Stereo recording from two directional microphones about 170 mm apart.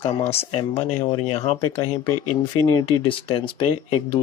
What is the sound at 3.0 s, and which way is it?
Speech, 30° left (ahead or behind).